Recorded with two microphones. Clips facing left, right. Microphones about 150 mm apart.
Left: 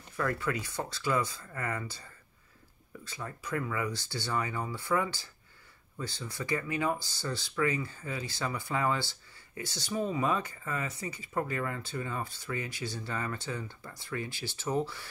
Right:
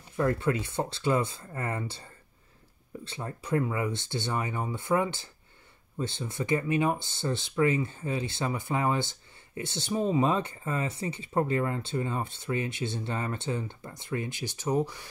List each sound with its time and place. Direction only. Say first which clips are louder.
0.2 s speech: right 5 dB; 25° right (ahead or behind)